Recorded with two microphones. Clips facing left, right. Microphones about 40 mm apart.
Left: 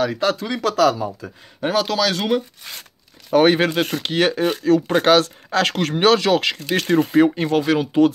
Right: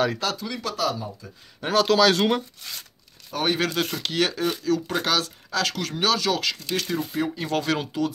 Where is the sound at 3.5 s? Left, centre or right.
Left.